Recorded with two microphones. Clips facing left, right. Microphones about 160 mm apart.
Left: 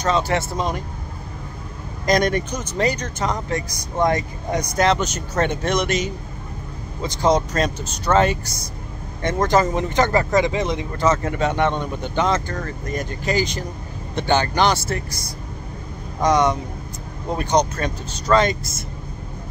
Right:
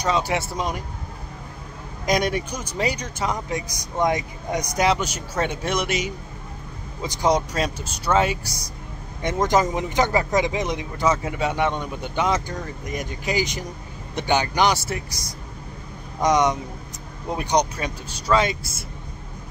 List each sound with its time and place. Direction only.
0.0 s speech: 15° right (ahead or behind)
2.0 s speech: 10° right (ahead or behind)